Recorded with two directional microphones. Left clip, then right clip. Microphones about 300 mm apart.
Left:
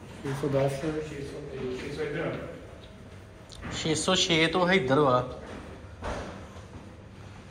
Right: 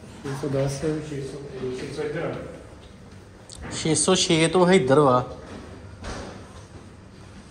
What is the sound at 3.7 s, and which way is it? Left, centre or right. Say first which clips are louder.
A man's voice: right 5 dB; centre.